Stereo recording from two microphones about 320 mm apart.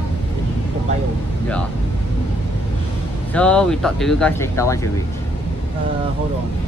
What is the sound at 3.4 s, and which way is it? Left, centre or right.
Speech, centre.